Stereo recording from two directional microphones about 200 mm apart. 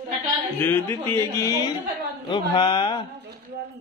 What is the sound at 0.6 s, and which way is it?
Speech, 10° left (ahead or behind).